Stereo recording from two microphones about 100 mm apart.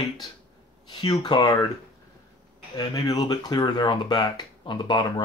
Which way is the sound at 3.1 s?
45° left (ahead or behind).